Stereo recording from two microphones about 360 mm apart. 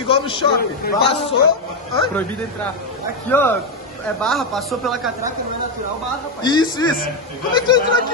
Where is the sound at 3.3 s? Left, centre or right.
Centre.